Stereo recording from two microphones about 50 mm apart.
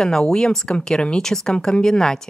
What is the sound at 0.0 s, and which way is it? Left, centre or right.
A woman's voice, centre.